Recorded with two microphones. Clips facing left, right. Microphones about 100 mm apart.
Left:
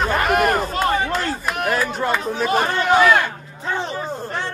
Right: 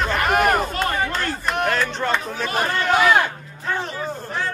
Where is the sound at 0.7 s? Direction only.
25° left (ahead or behind).